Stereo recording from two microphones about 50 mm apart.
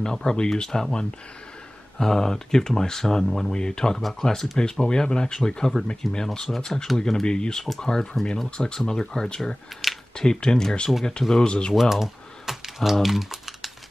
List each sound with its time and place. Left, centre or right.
0.0 s speech: centre
11.7 s typing: centre